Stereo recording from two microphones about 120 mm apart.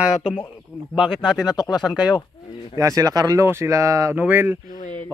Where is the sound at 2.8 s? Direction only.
30° right (ahead or behind).